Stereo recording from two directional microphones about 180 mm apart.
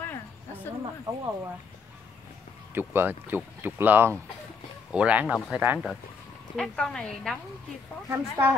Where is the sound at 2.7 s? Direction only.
15° right (ahead or behind).